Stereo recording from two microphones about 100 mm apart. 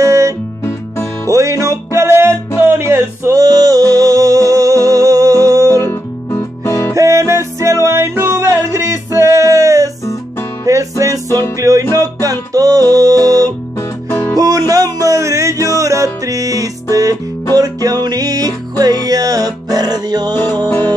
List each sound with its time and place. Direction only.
0.0 s music: 30° right (ahead or behind)
0.7 s music: 30° left (ahead or behind)
1.3 s music: 30° right (ahead or behind)
3.4 s music: 40° right (ahead or behind)
5.9 s music: 25° left (ahead or behind)
7.0 s music: 30° right (ahead or behind)
11.2 s music: 25° left (ahead or behind)
11.9 s music: 35° right (ahead or behind)
14.1 s music: 25° left (ahead or behind)
14.7 s music: 35° right (ahead or behind)
20.3 s music: 20° left (ahead or behind)